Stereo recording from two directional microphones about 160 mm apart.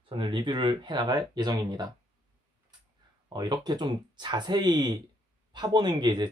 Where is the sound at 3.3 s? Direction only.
25° right (ahead or behind).